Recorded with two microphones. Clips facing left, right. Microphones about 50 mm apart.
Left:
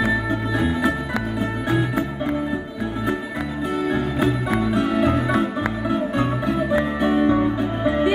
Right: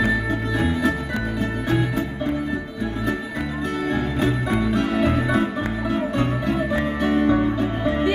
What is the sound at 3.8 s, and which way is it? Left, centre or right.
Music, centre.